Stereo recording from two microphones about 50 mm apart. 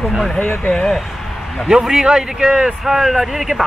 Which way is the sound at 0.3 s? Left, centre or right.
Centre.